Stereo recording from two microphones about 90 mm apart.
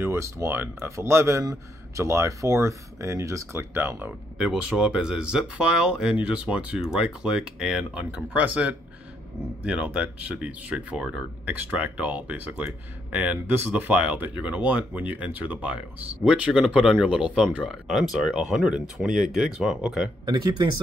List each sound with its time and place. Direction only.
0.0 s speech: 30° right (ahead or behind)
4.4 s speech: 5° right (ahead or behind)
20.2 s speech: 55° right (ahead or behind)